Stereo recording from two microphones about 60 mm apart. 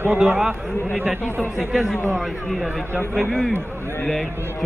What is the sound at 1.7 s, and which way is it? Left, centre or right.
Speech, centre.